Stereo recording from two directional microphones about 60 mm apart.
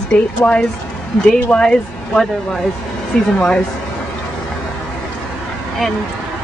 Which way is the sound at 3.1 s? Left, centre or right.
Centre.